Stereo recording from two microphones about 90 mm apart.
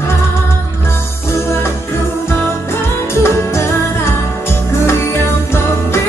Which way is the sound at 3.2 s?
30° left (ahead or behind).